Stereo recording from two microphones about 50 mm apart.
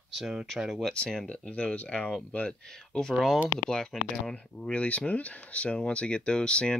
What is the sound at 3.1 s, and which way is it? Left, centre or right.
Speech, centre.